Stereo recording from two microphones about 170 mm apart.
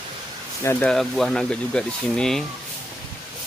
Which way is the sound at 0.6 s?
5° left (ahead or behind).